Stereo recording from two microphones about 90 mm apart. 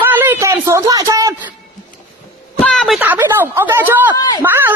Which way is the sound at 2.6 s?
10° left (ahead or behind).